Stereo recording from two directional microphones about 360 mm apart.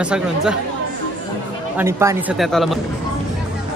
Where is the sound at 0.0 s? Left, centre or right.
Centre.